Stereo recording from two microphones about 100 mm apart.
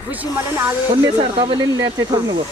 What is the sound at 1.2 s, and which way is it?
Speech, 60° right (ahead or behind).